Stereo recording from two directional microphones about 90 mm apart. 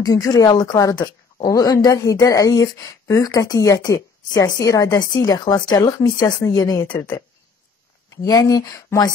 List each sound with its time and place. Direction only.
0.0 s speech: 40° left (ahead or behind)
8.1 s speech: 40° left (ahead or behind)